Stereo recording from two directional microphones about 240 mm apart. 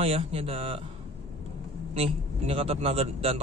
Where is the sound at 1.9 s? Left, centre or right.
Right.